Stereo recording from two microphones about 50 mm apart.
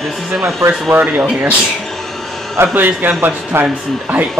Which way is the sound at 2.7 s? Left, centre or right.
Right.